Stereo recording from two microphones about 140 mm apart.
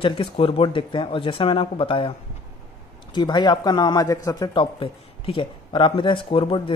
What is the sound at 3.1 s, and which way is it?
Speech, 30° left (ahead or behind).